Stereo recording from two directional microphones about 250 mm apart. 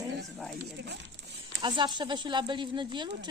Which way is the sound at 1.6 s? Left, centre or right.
Centre.